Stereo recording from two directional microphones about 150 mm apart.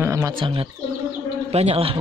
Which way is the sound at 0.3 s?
35° right (ahead or behind).